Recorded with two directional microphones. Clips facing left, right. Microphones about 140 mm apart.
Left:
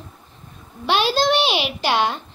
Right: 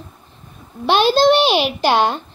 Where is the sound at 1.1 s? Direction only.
35° right (ahead or behind).